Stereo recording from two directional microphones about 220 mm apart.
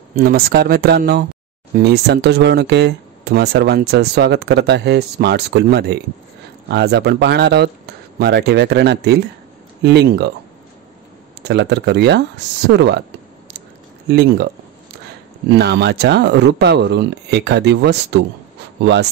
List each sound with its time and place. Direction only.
0.1 s speech: 45° right (ahead or behind)
11.4 s speech: 50° right (ahead or behind)
14.0 s speech: 50° right (ahead or behind)
15.5 s speech: 50° right (ahead or behind)